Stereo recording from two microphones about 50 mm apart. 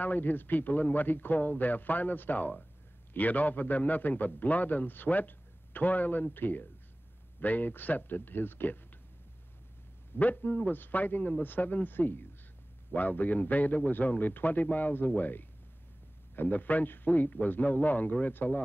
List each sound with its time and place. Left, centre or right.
0.0 s a man's voice: left
10.1 s a man's voice: left